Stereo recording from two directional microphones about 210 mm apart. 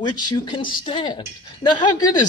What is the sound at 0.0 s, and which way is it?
Speech, 20° left (ahead or behind).